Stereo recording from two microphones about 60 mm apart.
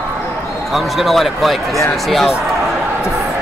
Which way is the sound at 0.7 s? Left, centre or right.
Centre.